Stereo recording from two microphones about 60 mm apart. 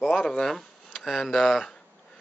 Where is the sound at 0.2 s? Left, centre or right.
Centre.